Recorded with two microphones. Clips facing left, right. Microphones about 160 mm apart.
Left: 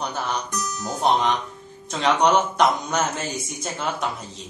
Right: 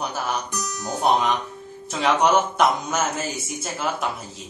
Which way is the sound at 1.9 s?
5° right (ahead or behind).